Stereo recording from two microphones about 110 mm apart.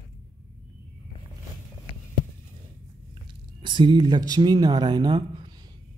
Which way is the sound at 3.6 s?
45° right (ahead or behind).